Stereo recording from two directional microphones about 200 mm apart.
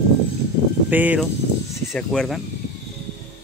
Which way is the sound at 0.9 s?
10° right (ahead or behind).